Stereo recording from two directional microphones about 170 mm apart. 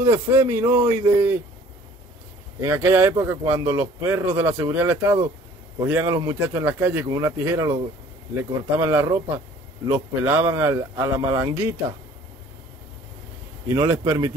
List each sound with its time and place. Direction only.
0.0 s speech: 20° right (ahead or behind)
2.6 s speech: 15° right (ahead or behind)
13.7 s speech: 15° right (ahead or behind)